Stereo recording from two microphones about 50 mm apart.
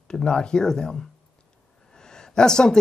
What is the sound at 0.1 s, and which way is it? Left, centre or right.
Speech, centre.